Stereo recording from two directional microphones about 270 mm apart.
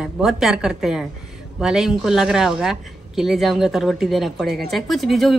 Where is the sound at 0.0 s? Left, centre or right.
Centre.